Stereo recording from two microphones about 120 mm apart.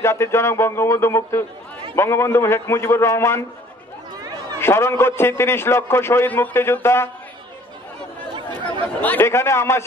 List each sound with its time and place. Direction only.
0.0 s a man's voice: 20° left (ahead or behind)
4.6 s a man's voice: 20° left (ahead or behind)
8.8 s a man's voice: 15° left (ahead or behind)